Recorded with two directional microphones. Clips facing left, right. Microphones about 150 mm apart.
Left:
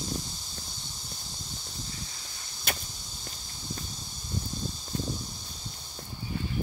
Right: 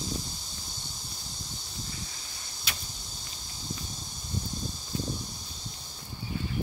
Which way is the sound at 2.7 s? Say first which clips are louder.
Left 6 dB; 50° left (ahead or behind).